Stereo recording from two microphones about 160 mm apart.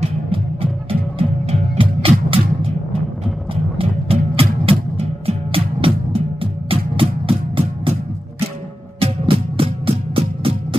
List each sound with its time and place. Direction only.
0.0 s music: 35° right (ahead or behind)
3.7 s music: 35° right (ahead or behind)
9.0 s music: 35° right (ahead or behind)